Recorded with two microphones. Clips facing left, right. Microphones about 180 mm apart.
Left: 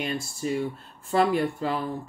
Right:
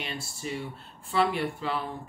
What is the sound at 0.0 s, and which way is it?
Speech, 45° left (ahead or behind).